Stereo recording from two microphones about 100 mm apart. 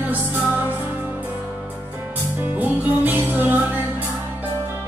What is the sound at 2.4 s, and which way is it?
Music, 15° right (ahead or behind).